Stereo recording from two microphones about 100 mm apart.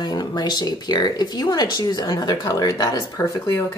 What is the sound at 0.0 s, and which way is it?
Speech, 40° left (ahead or behind).